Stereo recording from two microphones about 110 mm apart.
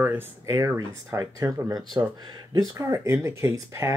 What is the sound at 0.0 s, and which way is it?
Speech, 20° right (ahead or behind).